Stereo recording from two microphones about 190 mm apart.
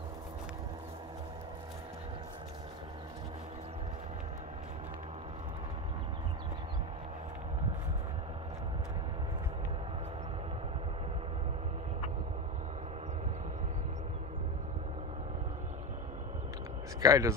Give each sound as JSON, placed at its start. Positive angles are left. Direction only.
{"t": 17.0, "sound": "speech", "side_deg": -20}